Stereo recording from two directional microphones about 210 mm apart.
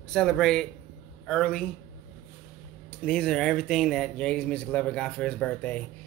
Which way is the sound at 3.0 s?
5° left (ahead or behind).